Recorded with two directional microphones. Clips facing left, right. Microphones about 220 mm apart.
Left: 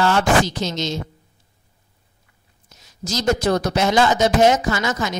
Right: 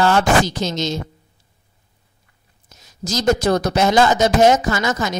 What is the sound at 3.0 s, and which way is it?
Speech, 40° right (ahead or behind).